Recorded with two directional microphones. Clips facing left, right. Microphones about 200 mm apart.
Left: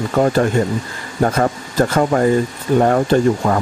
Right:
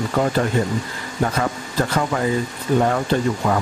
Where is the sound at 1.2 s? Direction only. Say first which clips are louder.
Left 5 dB; 45° left (ahead or behind).